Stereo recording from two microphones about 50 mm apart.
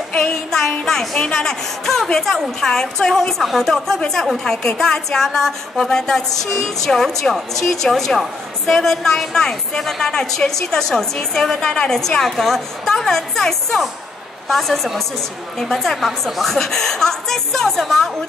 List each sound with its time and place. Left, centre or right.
0.2 s music: centre
1.3 s a woman's voice: centre
16.5 s a woman's voice: centre